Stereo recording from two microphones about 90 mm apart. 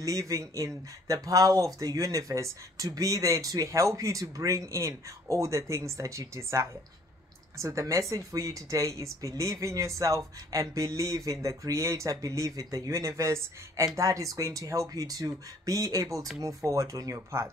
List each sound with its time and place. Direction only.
0.0 s speech: 40° right (ahead or behind)